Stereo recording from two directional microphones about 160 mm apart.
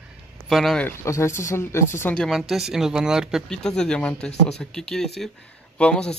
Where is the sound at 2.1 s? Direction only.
Centre (ahead or behind).